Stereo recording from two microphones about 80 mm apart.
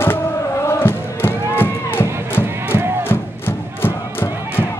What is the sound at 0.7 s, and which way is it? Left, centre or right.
Music, left.